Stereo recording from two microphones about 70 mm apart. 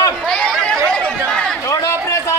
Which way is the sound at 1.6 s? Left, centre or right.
Left.